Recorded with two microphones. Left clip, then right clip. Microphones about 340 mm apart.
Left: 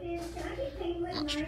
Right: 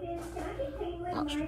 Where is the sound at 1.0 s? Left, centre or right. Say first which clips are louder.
Even; centre.